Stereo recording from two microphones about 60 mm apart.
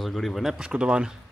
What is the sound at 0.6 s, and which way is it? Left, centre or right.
Speech, centre.